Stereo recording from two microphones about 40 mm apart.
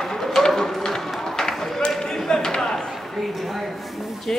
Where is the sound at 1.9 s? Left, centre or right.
Centre.